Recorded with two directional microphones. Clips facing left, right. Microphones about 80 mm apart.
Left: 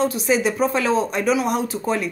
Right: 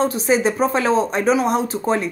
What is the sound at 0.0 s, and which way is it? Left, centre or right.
A woman's voice, right.